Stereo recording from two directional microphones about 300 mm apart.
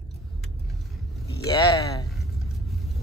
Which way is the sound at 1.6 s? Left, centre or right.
Centre.